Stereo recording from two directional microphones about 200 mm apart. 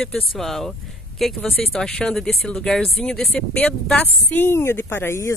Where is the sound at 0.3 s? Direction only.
Centre (ahead or behind).